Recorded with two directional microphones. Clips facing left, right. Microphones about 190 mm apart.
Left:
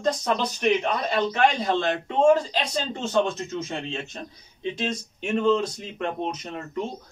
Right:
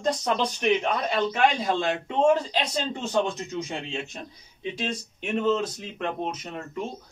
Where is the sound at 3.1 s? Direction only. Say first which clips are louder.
Left 3 dB; 15° right (ahead or behind).